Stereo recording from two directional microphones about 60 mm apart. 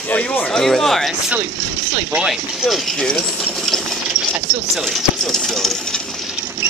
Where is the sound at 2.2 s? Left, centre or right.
Centre.